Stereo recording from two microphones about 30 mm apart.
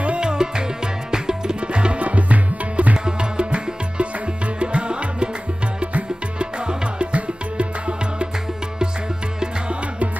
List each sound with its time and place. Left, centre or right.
0.2 s music: right
1.7 s music: right
3.1 s music: right